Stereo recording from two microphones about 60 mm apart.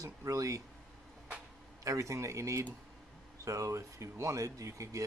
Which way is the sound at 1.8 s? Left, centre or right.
Right.